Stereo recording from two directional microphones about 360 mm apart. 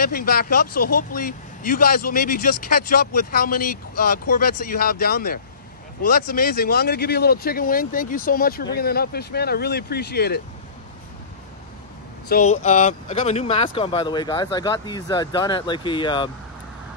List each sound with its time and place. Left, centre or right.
0.0 s speech: left
12.3 s speech: centre